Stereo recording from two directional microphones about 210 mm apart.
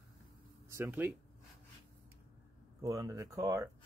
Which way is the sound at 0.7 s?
10° right (ahead or behind).